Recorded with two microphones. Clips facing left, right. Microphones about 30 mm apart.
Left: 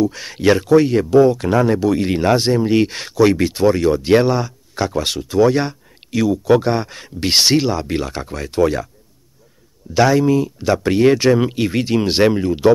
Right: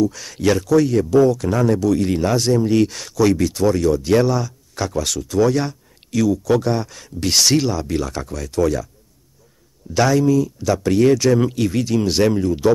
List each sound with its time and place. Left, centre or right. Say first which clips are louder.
0.0 s speech: left 2 dB; left
9.9 s speech: left 3 dB; centre
10.2 s speech: left 1 dB; left